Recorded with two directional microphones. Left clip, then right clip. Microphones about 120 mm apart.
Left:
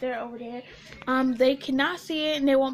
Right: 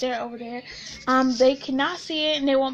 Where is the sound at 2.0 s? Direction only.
35° left (ahead or behind).